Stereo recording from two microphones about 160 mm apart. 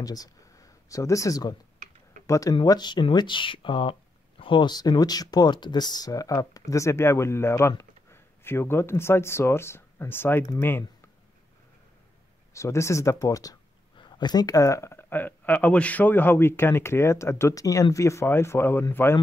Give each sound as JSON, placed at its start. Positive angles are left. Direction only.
{"t": 0.0, "sound": "speech", "side_deg": 20}
{"t": 12.5, "sound": "speech", "side_deg": 20}